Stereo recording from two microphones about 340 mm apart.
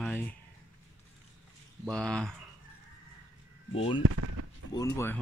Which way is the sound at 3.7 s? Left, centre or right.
Centre.